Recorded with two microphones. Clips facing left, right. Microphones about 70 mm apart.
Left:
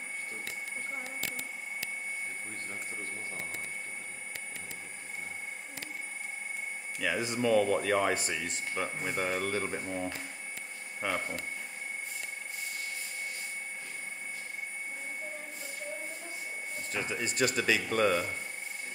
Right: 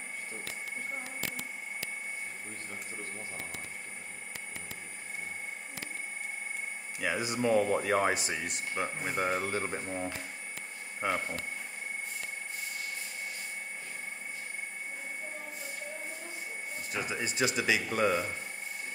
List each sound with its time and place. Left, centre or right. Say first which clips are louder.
7.0 s speech: even; centre
11.0 s speech: right 1 dB; right
16.9 s speech: even; centre